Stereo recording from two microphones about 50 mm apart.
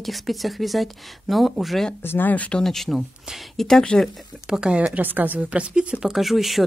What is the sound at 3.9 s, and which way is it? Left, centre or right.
Speech, centre.